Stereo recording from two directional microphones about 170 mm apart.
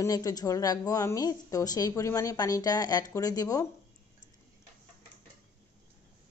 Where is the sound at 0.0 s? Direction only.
20° left (ahead or behind).